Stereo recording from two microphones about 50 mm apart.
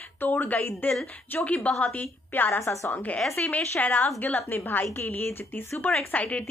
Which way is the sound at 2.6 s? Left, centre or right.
Left.